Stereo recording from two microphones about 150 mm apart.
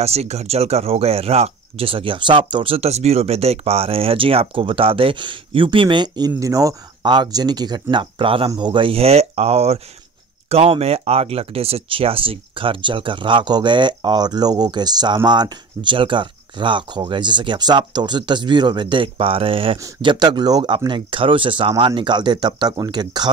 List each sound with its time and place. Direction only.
0.0 s speech: 45° right (ahead or behind); by 23.3 s 30° right (ahead or behind)